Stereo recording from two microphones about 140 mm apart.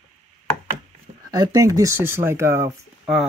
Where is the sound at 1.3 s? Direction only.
25° right (ahead or behind).